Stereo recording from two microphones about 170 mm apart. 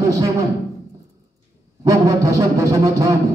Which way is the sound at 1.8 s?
20° right (ahead or behind).